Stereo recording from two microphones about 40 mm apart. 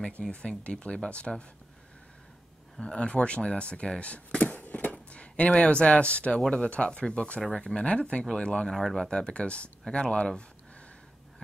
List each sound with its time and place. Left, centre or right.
0.3 s speech: left
2.8 s speech: left
4.4 s a sound: left
4.9 s speech: left
8.6 s speech: centre
9.1 s speech: left